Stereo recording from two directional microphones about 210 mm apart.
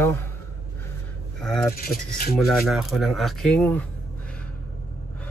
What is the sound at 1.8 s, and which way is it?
Speech, 45° left (ahead or behind).